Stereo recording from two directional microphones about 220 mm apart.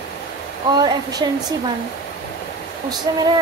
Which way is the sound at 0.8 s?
15° right (ahead or behind).